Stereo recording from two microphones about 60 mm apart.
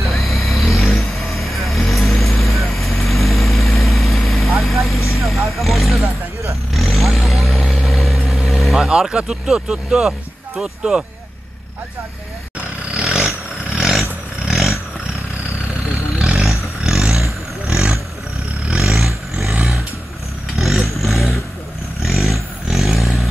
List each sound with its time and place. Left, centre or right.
0.0 s vehicle: centre
8.8 s speech: centre
12.5 s roar: centre
14.5 s vehicle: centre
16.2 s vehicle: centre
18.8 s vehicle: centre
20.5 s vehicle: centre
22.0 s a sound: centre